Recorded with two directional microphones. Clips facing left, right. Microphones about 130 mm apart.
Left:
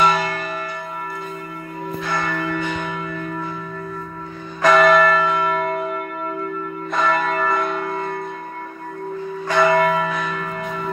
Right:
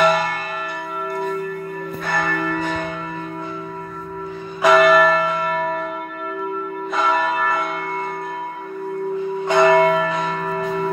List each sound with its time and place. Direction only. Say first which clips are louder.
2.0 s church bell: right 2 dB; 55° right (ahead or behind)
4.6 s church bell: right 1 dB; 10° right (ahead or behind)
7.0 s church bell: even; 5° right (ahead or behind)
9.4 s church bell: right 3 dB; 20° right (ahead or behind)